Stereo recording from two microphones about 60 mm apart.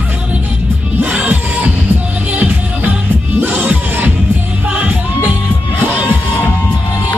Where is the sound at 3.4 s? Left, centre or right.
Right.